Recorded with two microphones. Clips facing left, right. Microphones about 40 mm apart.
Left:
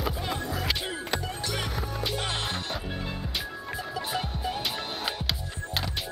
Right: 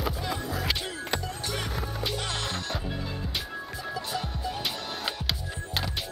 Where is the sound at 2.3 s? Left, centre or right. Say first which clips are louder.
Left 1 dB; left.